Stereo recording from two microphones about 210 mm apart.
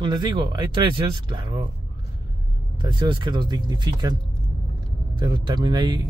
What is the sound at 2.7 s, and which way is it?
Speech, 20° right (ahead or behind).